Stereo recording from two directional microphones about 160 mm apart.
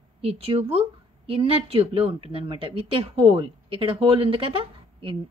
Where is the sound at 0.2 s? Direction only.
35° right (ahead or behind).